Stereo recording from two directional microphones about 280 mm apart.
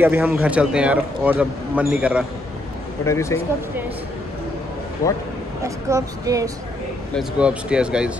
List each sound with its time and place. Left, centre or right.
0.0 s a man's voice: centre
3.1 s speech: centre
5.6 s a man's voice: centre